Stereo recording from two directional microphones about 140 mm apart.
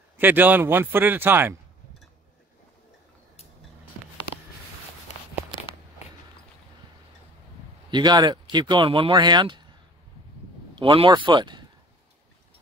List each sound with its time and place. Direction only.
0.2 s speech: 15° right (ahead or behind)
7.9 s speech: 30° right (ahead or behind)
10.8 s speech: 40° right (ahead or behind)